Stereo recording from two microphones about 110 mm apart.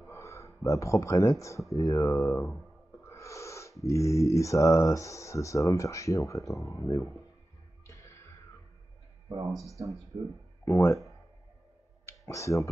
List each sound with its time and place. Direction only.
0.1 s a sound: 25° left (ahead or behind)
0.7 s speech: 30° left (ahead or behind)
3.1 s owl: 30° left (ahead or behind)
3.8 s speech: 30° left (ahead or behind)
7.8 s music: 30° left (ahead or behind)
9.5 s speech: centre (ahead or behind)
10.1 s speech: 65° right (ahead or behind)
10.6 s speech: 25° left (ahead or behind)
12.1 s speech: 30° left (ahead or behind)